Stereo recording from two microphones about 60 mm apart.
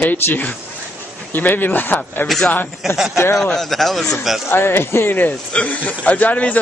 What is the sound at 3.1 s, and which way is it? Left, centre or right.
Speech, left.